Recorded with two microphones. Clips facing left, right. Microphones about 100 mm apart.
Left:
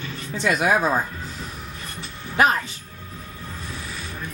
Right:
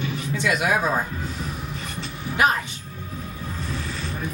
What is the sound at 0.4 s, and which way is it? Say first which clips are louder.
Speech: left 2 dB; 35° left (ahead or behind).